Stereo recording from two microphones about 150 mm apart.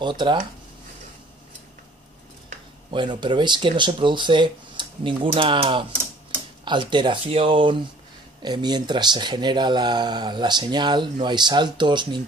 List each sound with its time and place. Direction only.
0.0 s speech: 30° right (ahead or behind)
2.9 s speech: 30° right (ahead or behind)